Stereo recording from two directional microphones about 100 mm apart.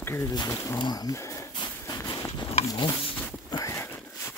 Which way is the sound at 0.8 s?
40° left (ahead or behind).